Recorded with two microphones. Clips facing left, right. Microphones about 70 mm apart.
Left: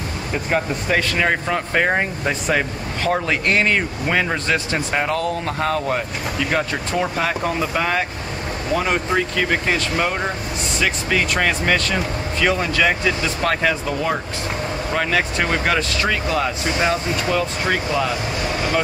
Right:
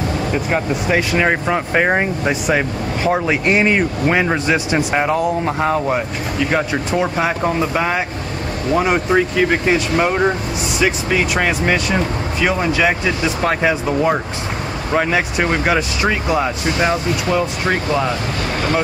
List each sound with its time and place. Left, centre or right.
0.5 s speech: centre